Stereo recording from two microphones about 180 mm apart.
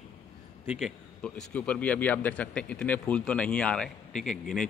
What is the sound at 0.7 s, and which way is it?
Speech, centre (ahead or behind).